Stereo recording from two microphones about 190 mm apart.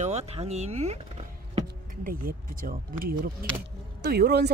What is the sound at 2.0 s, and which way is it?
Speech, 45° right (ahead or behind).